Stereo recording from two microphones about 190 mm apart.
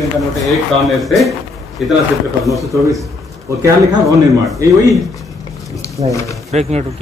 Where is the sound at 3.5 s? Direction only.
15° right (ahead or behind).